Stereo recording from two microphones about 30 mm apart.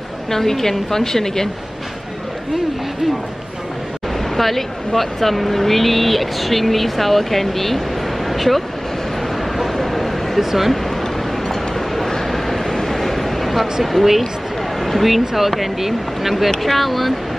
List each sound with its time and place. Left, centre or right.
0.3 s a woman's voice: centre
4.2 s speech: centre
9.4 s a sound: centre
10.4 s speech: centre
10.7 s a sound: centre
12.6 s vehicle: left
12.9 s a sound: centre
14.0 s speech: centre
16.4 s speech: centre